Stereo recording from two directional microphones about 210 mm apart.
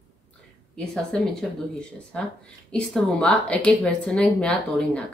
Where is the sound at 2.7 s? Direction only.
5° left (ahead or behind).